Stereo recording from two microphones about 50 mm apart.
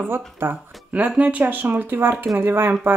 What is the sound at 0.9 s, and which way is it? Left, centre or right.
Speech, right.